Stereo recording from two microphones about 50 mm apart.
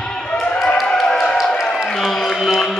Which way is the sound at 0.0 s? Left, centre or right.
Centre.